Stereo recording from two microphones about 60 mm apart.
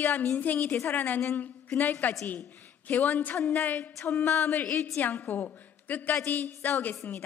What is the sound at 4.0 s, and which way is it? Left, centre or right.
Music, left.